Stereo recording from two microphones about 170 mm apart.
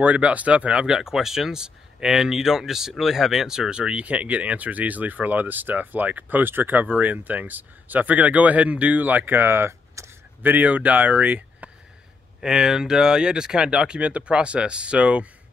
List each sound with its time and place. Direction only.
0.0 s speech: 10° right (ahead or behind)